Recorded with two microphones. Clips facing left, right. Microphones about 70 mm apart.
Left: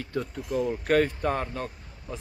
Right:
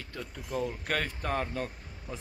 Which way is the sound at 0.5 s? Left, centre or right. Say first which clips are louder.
Left 7 dB; centre.